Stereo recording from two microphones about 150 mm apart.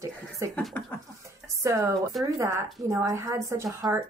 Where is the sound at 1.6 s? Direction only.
20° right (ahead or behind).